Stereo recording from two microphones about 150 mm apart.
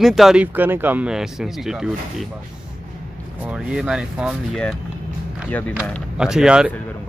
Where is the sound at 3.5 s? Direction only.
5° right (ahead or behind).